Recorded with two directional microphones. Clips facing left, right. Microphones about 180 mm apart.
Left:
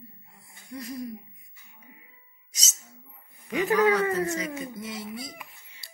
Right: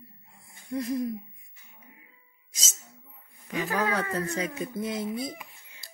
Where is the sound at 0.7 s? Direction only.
55° right (ahead or behind).